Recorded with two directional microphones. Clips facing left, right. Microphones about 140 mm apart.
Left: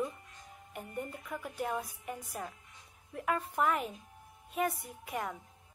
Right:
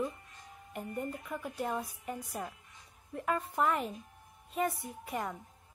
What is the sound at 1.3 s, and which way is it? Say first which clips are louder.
A woman's voice: right 1 dB; centre (ahead or behind).